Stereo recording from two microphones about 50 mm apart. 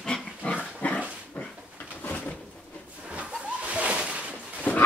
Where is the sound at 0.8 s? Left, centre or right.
Left.